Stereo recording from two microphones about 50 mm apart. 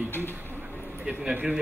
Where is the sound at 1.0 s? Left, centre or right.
Centre.